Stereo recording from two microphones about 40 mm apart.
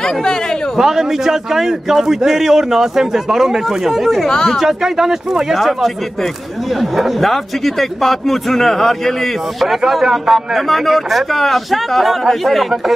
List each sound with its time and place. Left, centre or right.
0.0 s a man's voice: centre
0.7 s a man's voice: centre
4.3 s speech: centre
4.6 s a man's voice: centre
6.8 s a man's voice: centre
10.0 s a man's voice: centre